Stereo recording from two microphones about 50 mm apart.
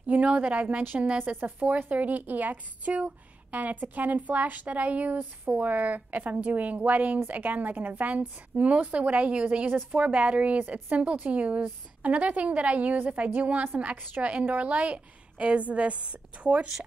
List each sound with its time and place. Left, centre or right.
0.0 s a woman's voice: right